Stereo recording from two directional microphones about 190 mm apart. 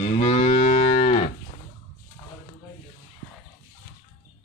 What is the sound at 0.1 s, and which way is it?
Moo, 35° left (ahead or behind).